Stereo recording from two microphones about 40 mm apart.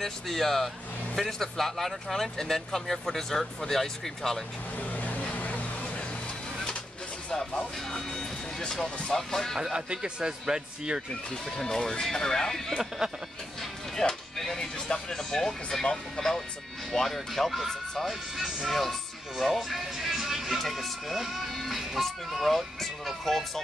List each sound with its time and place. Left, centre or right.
0.0 s speech: centre
4.7 s vehicle: left
7.2 s speech: centre
9.8 s a man's voice: right
11.5 s speech: centre
13.6 s music: centre
14.9 s speech: centre
20.6 s speech: centre
21.1 s speech: centre
21.5 s music: centre
22.0 s speech: centre